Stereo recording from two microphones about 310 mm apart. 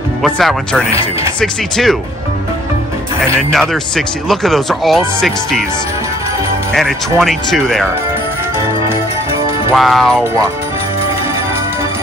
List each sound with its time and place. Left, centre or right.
0.2 s speech: centre
3.3 s speech: centre
6.7 s speech: centre
9.8 s speech: centre